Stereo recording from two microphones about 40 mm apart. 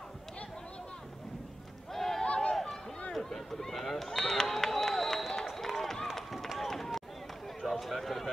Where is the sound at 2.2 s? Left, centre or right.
Left.